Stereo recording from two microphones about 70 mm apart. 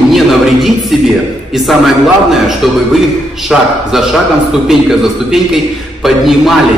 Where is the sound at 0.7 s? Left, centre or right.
Centre.